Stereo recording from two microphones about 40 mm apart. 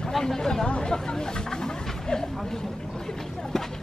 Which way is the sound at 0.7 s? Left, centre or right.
Centre.